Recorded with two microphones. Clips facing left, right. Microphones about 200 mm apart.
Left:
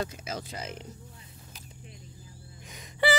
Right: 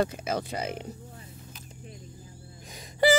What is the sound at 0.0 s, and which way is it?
Speech, 60° right (ahead or behind).